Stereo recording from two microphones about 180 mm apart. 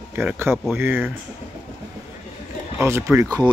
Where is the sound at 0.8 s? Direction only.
10° right (ahead or behind).